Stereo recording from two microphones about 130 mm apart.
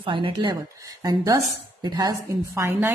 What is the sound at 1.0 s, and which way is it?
Speech, 25° right (ahead or behind).